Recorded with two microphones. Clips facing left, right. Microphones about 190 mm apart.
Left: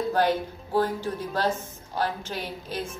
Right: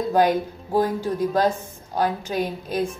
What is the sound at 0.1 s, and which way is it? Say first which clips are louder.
Speech: right 8 dB; 15° right (ahead or behind).